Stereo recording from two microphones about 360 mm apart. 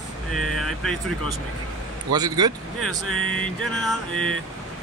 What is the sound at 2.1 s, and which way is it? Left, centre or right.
Speech, centre.